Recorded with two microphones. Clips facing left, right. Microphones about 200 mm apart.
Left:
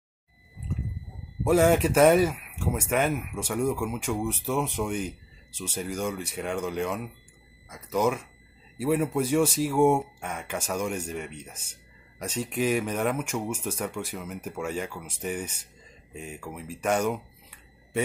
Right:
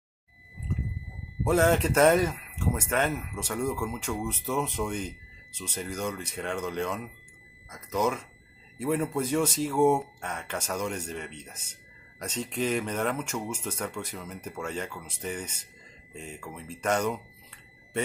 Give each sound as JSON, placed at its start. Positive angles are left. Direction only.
{"t": 1.4, "sound": "speech", "side_deg": 10}